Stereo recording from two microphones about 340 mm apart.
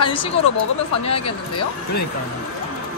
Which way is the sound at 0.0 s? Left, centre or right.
Centre.